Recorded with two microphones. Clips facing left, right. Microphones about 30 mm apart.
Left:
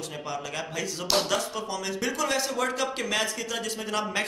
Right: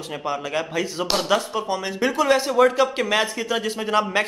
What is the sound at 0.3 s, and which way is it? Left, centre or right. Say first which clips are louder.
A man's voice: right 9 dB; right.